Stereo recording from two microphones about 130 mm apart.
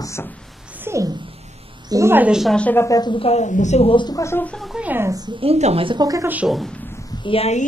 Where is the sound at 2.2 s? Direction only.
5° right (ahead or behind).